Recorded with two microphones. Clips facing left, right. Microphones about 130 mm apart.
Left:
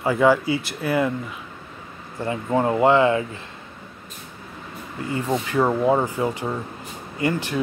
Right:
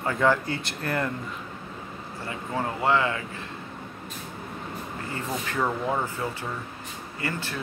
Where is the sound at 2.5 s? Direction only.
30° left (ahead or behind).